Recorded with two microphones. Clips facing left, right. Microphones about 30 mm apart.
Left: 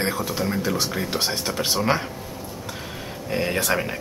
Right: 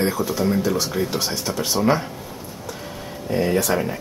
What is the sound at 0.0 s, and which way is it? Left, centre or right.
Speech, left.